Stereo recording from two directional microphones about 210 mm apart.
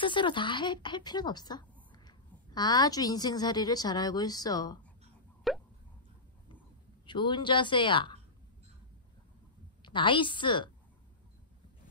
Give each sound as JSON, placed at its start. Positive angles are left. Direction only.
{"t": 0.0, "sound": "speech", "side_deg": 20}
{"t": 5.5, "sound": "plop", "side_deg": 0}
{"t": 7.1, "sound": "speech", "side_deg": 20}
{"t": 9.8, "sound": "a woman's voice", "side_deg": 20}